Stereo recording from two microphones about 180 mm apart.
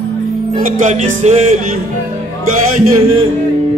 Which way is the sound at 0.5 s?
45° right (ahead or behind).